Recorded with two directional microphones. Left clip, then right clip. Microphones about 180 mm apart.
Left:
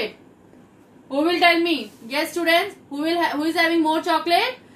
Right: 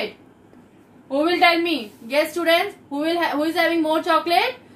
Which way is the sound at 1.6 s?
20° right (ahead or behind).